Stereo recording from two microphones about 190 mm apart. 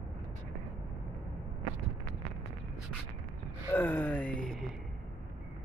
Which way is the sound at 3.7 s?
10° left (ahead or behind).